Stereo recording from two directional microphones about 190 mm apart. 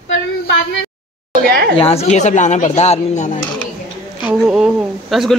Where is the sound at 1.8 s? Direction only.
30° left (ahead or behind).